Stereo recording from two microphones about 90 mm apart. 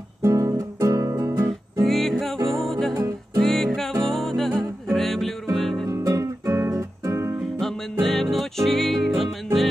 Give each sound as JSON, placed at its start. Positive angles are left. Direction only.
{"t": 0.2, "sound": "guitar", "side_deg": -35}
{"t": 1.9, "sound": "music", "side_deg": 5}
{"t": 5.9, "sound": "music", "side_deg": -35}
{"t": 7.6, "sound": "music", "side_deg": 5}